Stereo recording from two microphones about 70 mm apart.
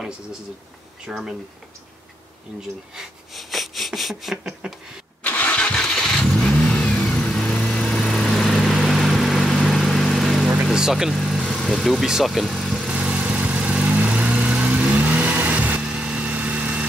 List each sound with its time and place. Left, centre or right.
1.0 s speech: centre
2.9 s speech: centre
5.2 s vehicle: left
8.0 s lawn mower: centre
8.6 s vehicle: centre
10.5 s vehicle: centre
11.5 s speech: centre
12.9 s vehicle: centre